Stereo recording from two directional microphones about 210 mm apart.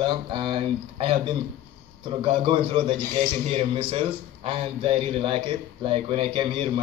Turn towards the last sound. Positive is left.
turn(degrees=-25)  # may be behind; listen again after turning